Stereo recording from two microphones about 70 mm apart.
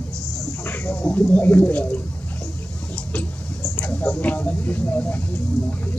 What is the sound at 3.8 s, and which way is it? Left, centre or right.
Speech, left.